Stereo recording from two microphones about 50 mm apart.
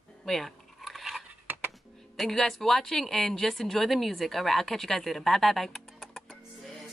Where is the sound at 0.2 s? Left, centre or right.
Centre.